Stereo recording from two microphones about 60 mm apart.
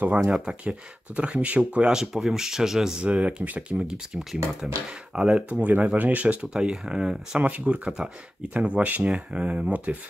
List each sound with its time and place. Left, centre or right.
0.2 s speech: centre
0.7 s speech: centre
3.8 s speech: centre